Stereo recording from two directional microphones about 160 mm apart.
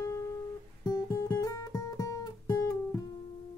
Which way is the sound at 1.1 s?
20° left (ahead or behind).